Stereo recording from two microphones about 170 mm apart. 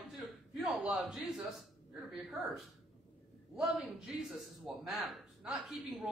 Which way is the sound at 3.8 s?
5° right (ahead or behind).